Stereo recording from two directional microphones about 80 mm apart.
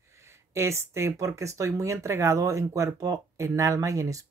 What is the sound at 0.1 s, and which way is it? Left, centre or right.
Speech, right.